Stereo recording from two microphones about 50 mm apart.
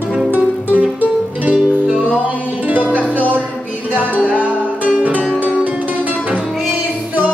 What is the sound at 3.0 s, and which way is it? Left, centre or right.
Music, left.